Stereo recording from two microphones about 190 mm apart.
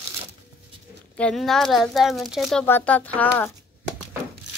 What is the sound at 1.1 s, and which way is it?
Speech, 5° left (ahead or behind).